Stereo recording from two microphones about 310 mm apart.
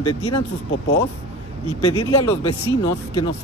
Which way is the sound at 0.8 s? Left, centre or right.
Left.